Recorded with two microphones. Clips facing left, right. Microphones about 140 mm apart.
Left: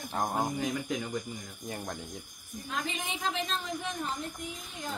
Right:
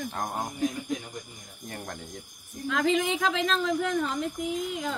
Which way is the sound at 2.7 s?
90° right.